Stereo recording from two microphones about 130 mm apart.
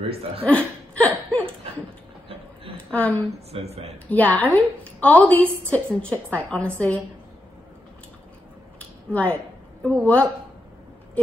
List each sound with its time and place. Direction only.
0.5 s laughter: 10° left (ahead or behind)
2.9 s a woman's voice: 15° left (ahead or behind)
3.3 s a woman's voice: 50° right (ahead or behind)
4.1 s a woman's voice: 10° left (ahead or behind)
8.7 s a sound: 10° left (ahead or behind)
9.8 s a woman's voice: 10° left (ahead or behind)